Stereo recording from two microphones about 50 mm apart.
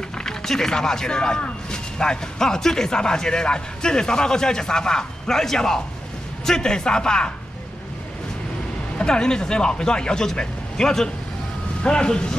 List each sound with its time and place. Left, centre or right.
0.2 s speech: centre
8.9 s speech: centre